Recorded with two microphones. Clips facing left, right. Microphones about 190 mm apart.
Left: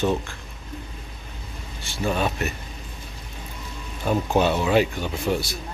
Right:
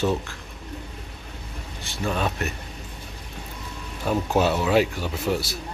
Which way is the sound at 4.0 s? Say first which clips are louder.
Left 1 dB; centre (ahead or behind).